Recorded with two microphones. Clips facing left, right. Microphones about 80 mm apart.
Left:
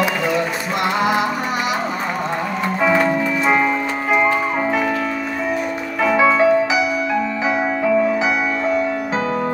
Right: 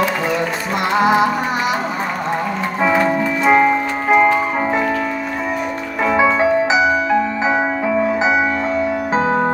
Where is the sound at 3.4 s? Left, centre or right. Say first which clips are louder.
Right 6 dB; centre.